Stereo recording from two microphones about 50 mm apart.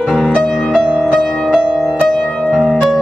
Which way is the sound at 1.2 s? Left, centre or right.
Centre.